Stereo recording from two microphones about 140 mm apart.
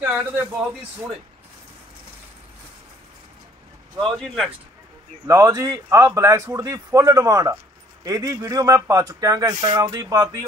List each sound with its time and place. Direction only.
0.0 s speech: 15° right (ahead or behind)
4.0 s speech: centre (ahead or behind)
5.2 s speech: 25° right (ahead or behind)